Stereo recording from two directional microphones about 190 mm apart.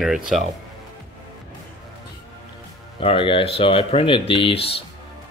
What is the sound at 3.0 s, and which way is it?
Speech, 30° left (ahead or behind).